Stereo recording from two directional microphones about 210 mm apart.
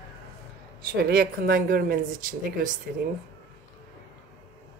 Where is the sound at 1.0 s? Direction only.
45° right (ahead or behind).